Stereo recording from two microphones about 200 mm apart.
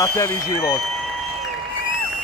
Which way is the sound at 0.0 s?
15° left (ahead or behind).